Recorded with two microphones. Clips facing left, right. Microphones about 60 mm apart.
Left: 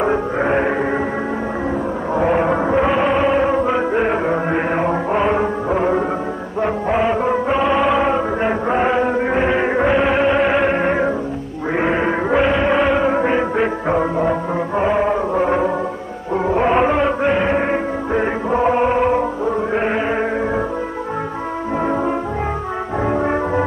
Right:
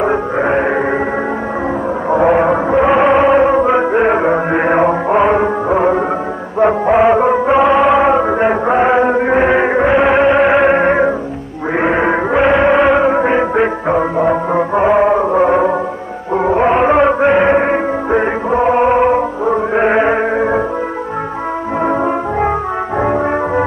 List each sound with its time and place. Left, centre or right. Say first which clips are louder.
0.0 s music: right 3 dB; right
2.8 s music: right 9 dB; right
8.0 s chant: right 6 dB; right
9.9 s music: right 5 dB; right
16.9 s music: right 6 dB; right
23.0 s brass instrument: right 2 dB; right